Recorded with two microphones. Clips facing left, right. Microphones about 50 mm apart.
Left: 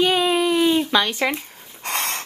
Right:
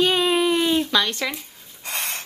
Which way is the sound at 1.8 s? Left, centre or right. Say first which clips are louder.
Left 4 dB; left.